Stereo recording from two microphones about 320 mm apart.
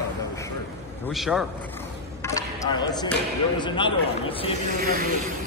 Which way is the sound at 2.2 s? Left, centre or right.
Centre.